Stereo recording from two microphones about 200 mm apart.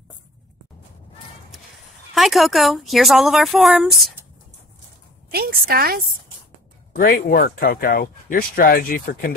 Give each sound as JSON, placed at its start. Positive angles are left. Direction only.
{"t": 2.1, "sound": "speech", "side_deg": 0}
{"t": 5.3, "sound": "a woman's voice", "side_deg": -50}
{"t": 6.9, "sound": "speech", "side_deg": 45}